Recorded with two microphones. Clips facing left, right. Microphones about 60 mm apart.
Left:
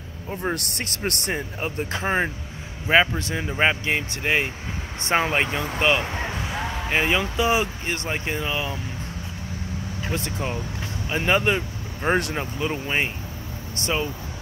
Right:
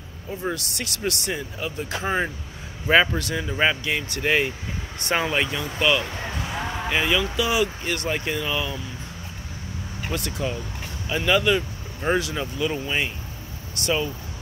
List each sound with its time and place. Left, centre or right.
0.5 s speech: left
6.3 s a sound: centre
6.9 s speech: left
10.1 s speech: left